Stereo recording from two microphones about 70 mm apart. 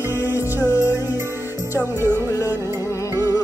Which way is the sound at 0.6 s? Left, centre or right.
Left.